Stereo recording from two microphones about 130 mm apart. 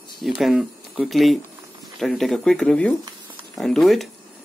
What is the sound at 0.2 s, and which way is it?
Speech, centre (ahead or behind).